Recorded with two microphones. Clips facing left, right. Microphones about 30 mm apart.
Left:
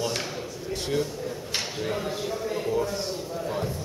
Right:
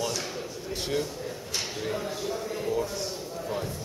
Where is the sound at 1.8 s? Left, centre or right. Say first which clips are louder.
Left 2 dB; centre.